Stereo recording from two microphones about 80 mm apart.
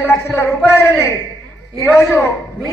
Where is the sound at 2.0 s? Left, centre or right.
Left.